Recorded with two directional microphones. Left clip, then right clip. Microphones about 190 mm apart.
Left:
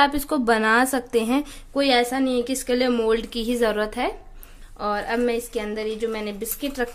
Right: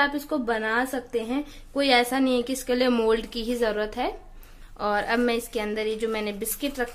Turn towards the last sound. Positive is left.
turn(degrees=5)  # may be behind; listen again after turning